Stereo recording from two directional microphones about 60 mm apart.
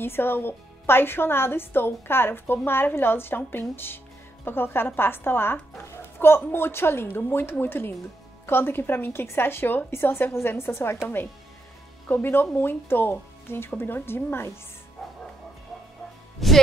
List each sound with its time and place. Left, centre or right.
0.0 s a woman's voice: left
12.1 s a woman's voice: left
15.0 s music: centre
16.3 s music: centre